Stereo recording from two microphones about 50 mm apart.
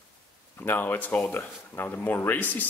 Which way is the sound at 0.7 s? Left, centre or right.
Left.